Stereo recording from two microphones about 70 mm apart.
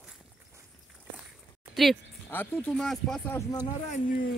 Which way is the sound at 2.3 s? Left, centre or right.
Left.